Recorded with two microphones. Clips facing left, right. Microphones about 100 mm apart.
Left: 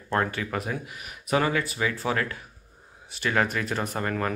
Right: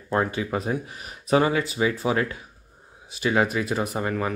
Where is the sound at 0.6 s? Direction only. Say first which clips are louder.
Right 4 dB; 30° right (ahead or behind).